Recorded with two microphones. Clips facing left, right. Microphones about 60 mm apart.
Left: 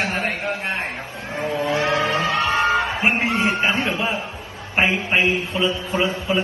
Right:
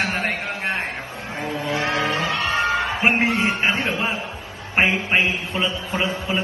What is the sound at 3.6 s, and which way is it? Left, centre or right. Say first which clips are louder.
A man's voice: left 1 dB; right.